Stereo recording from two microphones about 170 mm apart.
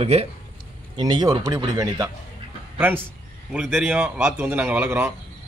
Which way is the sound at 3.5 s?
5° right (ahead or behind).